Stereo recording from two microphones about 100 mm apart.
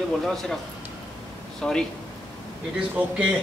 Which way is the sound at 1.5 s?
5° left (ahead or behind).